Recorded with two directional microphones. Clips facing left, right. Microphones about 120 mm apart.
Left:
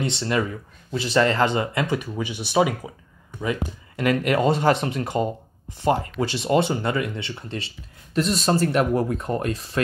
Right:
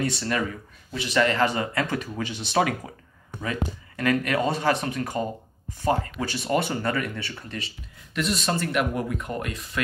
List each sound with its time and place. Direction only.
0.0 s speech: 25° left (ahead or behind)
3.4 s speech: 25° left (ahead or behind)